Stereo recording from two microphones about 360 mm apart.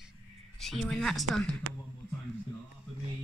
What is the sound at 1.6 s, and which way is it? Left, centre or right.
Speech, right.